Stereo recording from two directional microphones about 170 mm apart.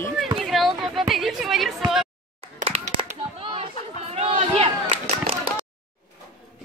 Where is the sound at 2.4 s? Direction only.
35° right (ahead or behind).